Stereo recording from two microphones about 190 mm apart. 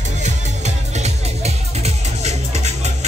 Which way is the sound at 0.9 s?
35° right (ahead or behind).